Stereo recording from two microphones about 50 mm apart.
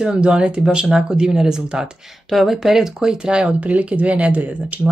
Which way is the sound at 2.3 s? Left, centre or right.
Centre.